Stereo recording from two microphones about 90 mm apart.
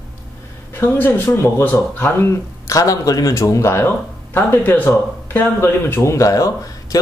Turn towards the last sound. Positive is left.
turn(degrees=35)  # may be behind; listen again after turning